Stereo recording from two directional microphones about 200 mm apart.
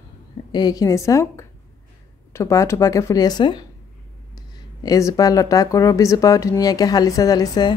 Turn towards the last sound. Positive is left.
turn(degrees=20)  # may be behind; listen again after turning